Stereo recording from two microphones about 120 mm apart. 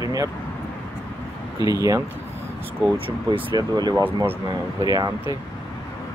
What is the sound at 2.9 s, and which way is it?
Speech, 50° right (ahead or behind).